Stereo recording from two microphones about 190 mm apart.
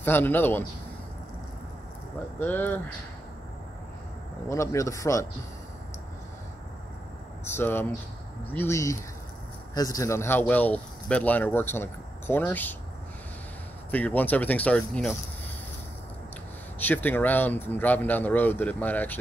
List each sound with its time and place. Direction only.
0.0 s speech: 10° left (ahead or behind)
2.4 s speech: 10° left (ahead or behind)
4.5 s speech: 15° left (ahead or behind)
7.4 s speech: 10° left (ahead or behind)
13.8 s speech: 10° left (ahead or behind)
16.8 s speech: 10° left (ahead or behind)